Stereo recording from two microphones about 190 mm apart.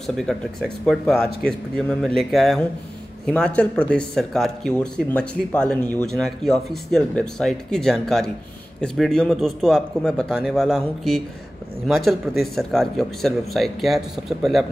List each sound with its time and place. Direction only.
0.0 s speech: centre (ahead or behind)